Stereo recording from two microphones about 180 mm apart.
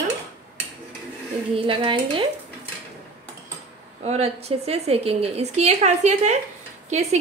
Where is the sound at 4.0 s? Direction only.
35° right (ahead or behind).